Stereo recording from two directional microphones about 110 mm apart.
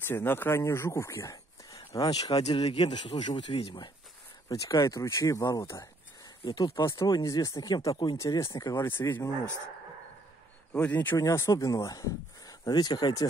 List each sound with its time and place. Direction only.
0.0 s speech: 20° left (ahead or behind); by 2.4 s 35° left (ahead or behind)
2.6 s a man's voice: 70° left (ahead or behind)
2.9 s speech: 45° left (ahead or behind)
4.5 s speech: 30° left (ahead or behind)
10.7 s speech: 15° left (ahead or behind)
11.1 s speech: 30° left (ahead or behind)